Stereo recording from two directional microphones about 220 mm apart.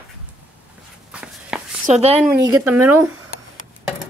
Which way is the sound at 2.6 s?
5° right (ahead or behind).